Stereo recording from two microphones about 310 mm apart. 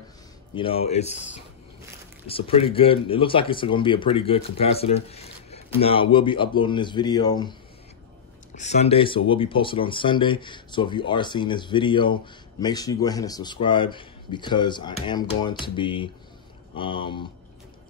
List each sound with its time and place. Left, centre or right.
0.6 s speech: centre
2.2 s speech: centre
8.5 s speech: left